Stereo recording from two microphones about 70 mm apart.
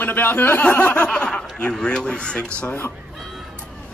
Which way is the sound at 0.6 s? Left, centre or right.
Centre.